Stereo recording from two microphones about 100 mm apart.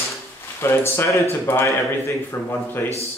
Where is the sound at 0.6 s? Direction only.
25° left (ahead or behind).